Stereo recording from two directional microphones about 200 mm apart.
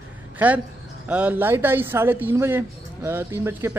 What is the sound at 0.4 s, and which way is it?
A man's voice, 10° right (ahead or behind).